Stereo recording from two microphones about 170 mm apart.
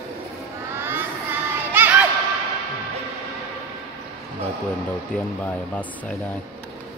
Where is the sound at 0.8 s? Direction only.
10° right (ahead or behind).